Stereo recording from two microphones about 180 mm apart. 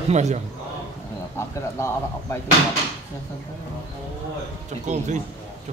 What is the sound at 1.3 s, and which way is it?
Speech, 15° left (ahead or behind).